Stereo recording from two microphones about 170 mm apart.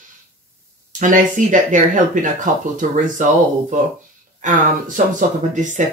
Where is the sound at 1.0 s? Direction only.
50° right (ahead or behind).